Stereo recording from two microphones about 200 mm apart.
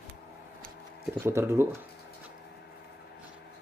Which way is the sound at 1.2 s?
15° right (ahead or behind).